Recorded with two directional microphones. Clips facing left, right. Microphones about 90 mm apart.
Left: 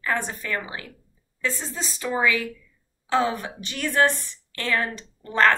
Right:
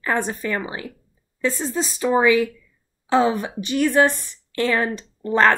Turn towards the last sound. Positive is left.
turn(degrees=-20)  # may be behind; listen again after turning